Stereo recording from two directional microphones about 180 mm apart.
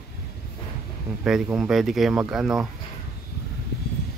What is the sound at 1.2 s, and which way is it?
Speech, 5° right (ahead or behind).